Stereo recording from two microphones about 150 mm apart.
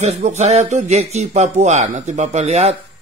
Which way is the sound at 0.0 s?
50° right (ahead or behind).